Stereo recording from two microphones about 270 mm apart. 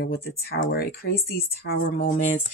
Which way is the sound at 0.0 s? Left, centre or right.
Left.